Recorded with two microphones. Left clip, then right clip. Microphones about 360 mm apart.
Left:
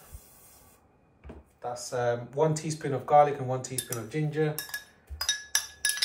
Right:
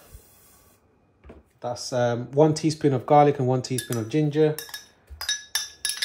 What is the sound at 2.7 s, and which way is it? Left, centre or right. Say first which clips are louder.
Speech: right 3 dB; centre.